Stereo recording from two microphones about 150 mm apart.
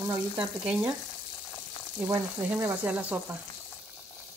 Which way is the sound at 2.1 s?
15° right (ahead or behind).